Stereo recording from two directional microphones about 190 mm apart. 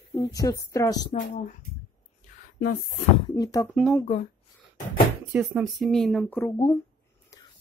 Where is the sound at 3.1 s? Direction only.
25° left (ahead or behind).